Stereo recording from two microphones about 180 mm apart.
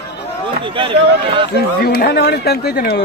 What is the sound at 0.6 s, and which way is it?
Speech, 30° right (ahead or behind).